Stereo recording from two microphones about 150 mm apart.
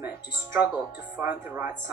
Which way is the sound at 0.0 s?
15° right (ahead or behind).